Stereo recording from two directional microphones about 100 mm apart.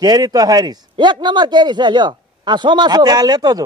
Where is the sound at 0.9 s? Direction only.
50° right (ahead or behind).